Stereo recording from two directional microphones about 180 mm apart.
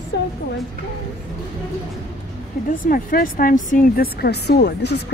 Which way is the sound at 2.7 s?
50° left (ahead or behind).